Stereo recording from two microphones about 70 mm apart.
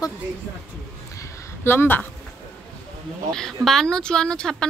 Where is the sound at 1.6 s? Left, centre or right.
Left.